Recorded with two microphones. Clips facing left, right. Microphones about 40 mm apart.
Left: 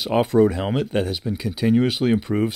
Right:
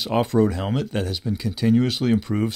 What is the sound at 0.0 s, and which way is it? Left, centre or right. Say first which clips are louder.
Speech: left 2 dB; centre.